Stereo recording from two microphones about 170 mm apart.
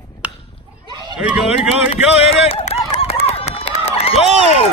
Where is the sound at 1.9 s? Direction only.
35° left (ahead or behind).